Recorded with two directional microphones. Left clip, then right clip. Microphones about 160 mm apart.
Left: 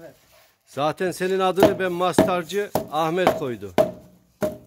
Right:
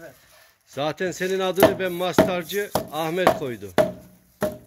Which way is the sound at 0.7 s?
20° left (ahead or behind).